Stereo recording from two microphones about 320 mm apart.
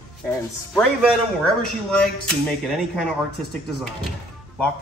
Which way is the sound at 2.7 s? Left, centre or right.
Centre.